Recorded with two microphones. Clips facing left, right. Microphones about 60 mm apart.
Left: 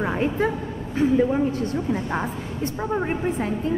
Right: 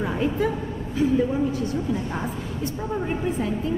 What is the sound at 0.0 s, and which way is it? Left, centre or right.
A woman's voice, left.